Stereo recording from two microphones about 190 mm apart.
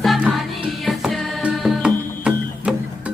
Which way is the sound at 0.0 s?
Centre (ahead or behind).